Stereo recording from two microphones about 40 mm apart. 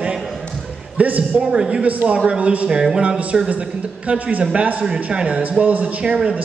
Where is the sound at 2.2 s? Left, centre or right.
Right.